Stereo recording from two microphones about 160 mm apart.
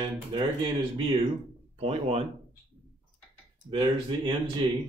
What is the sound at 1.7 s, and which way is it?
Speech, 40° right (ahead or behind).